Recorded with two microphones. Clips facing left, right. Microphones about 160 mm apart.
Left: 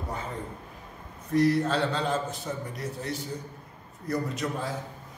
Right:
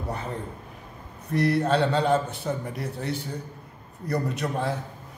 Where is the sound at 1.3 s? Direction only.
65° right (ahead or behind).